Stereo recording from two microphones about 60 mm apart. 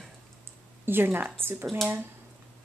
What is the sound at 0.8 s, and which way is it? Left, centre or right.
Speech, right.